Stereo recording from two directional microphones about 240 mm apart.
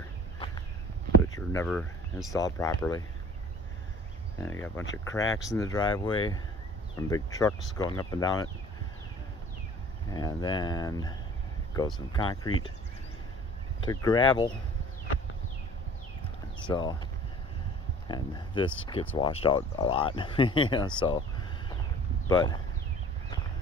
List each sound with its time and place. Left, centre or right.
1.5 s speech: centre
2.3 s speech: centre
4.4 s speech: centre
10.1 s speech: centre
13.7 s speech: centre
16.6 s speech: centre
18.0 s speech: centre
22.3 s speech: centre